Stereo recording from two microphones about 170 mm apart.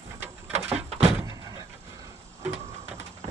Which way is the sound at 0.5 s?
40° right (ahead or behind).